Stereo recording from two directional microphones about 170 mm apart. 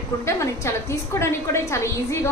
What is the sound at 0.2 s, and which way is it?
A woman's voice, 15° left (ahead or behind).